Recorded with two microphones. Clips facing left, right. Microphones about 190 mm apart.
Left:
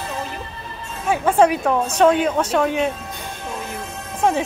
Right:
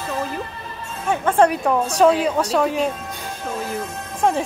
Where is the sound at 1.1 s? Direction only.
5° left (ahead or behind).